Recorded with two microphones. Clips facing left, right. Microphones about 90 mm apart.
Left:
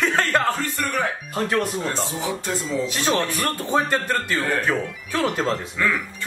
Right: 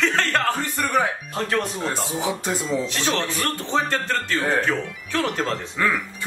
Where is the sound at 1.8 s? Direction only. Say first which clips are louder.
Even; 15° right (ahead or behind).